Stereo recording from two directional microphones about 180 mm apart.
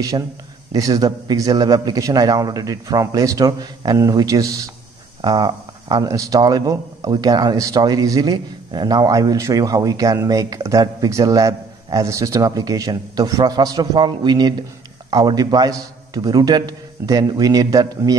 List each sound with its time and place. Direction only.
0.7 s speech: 20° right (ahead or behind)